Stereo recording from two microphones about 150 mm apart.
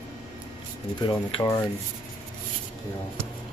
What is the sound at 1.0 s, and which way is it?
Speech, 30° left (ahead or behind).